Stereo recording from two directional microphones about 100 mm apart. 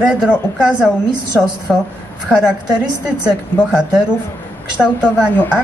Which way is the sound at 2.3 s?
10° right (ahead or behind).